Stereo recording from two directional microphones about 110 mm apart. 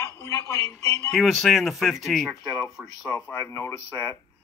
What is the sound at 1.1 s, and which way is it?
Speech, centre (ahead or behind).